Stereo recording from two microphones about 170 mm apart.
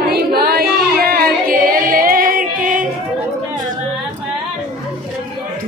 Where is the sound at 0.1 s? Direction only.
65° right (ahead or behind).